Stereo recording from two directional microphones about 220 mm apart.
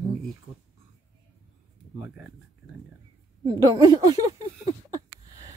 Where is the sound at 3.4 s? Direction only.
20° right (ahead or behind).